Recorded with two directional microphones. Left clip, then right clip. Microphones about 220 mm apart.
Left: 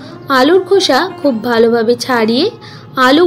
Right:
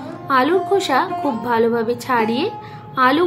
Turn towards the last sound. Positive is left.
turn(degrees=15)  # may be behind; listen again after turning